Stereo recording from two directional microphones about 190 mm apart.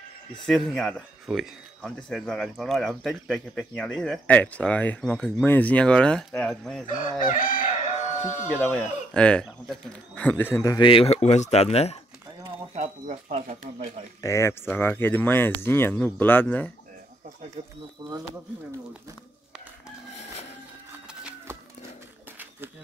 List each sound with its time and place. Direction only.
0.5 s speech: centre (ahead or behind)
6.9 s chicken: 45° left (ahead or behind)
8.5 s speech: 10° left (ahead or behind); by 12.0 s 35° left (ahead or behind)
12.7 s speech: 35° right (ahead or behind)
14.2 s speech: 15° left (ahead or behind)
17.6 s speech: 30° right (ahead or behind)
21.1 s a sound: 5° right (ahead or behind)